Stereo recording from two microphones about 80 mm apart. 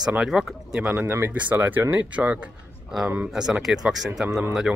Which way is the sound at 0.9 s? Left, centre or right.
Right.